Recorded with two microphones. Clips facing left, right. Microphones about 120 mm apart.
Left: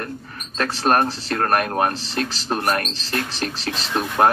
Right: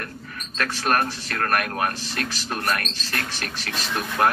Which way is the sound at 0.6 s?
30° left (ahead or behind).